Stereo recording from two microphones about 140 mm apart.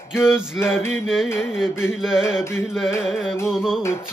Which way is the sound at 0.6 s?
Centre (ahead or behind).